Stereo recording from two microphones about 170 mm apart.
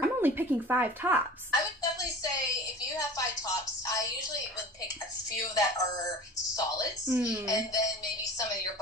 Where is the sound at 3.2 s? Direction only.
20° left (ahead or behind).